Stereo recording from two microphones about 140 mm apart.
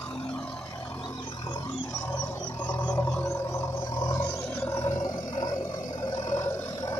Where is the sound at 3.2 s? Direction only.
25° left (ahead or behind).